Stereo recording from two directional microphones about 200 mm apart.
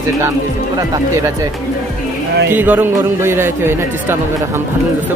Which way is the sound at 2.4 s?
10° right (ahead or behind).